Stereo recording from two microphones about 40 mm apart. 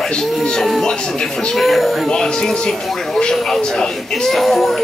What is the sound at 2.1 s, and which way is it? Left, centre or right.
Music, centre.